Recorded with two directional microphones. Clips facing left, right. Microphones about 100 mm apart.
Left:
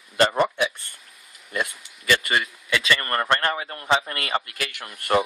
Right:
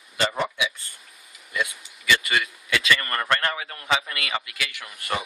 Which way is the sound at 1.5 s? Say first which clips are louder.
Left 1 dB; 45° left (ahead or behind).